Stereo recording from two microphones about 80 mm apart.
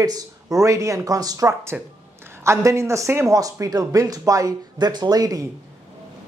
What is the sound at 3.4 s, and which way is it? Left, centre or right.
A man's voice, right.